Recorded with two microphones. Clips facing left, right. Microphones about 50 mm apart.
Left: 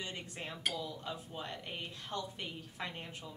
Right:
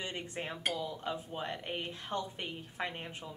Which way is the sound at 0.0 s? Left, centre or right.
Right.